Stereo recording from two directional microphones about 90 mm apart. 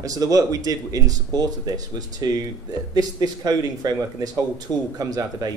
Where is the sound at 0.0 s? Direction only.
40° right (ahead or behind).